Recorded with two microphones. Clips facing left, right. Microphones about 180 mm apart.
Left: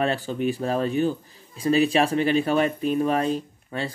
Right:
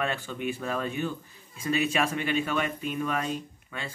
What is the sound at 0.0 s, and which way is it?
Speech, 35° left (ahead or behind).